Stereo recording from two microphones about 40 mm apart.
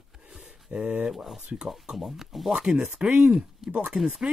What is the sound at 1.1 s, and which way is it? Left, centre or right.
Speech, centre.